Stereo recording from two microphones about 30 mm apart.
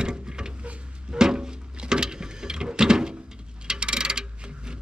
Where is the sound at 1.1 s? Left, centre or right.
Right.